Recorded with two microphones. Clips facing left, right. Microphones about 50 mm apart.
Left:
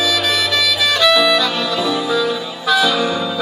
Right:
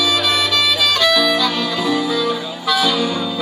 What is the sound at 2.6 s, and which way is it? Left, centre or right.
Music, left.